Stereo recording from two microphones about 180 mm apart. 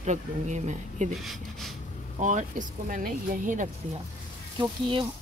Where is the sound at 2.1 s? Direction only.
45° right (ahead or behind).